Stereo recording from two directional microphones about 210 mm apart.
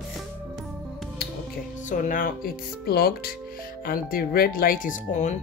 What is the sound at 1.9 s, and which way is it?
A woman's voice, 40° left (ahead or behind).